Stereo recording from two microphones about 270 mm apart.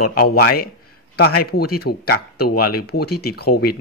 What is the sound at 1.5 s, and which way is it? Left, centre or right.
Speech, left.